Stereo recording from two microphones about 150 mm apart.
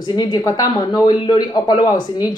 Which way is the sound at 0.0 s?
25° left (ahead or behind).